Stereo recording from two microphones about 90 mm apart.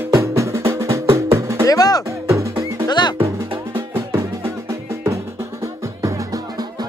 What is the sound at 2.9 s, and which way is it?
Music, 55° left (ahead or behind).